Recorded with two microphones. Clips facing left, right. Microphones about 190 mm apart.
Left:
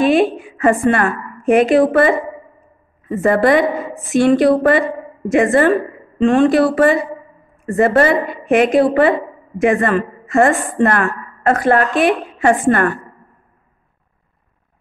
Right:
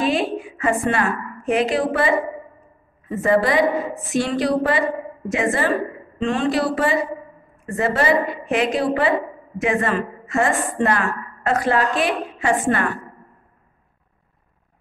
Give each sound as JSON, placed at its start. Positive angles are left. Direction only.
{"t": 0.0, "sound": "a woman's voice", "side_deg": 55}
{"t": 3.2, "sound": "a woman's voice", "side_deg": 55}